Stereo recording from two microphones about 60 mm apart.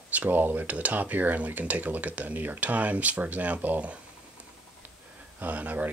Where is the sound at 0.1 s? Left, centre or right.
Right.